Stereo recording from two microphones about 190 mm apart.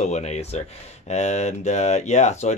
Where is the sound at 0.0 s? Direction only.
35° left (ahead or behind).